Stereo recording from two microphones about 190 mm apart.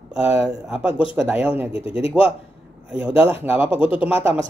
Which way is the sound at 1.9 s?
30° left (ahead or behind).